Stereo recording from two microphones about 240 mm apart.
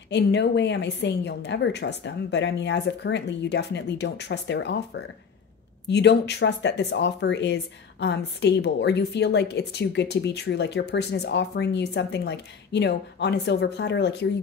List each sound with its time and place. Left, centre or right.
0.1 s speech: left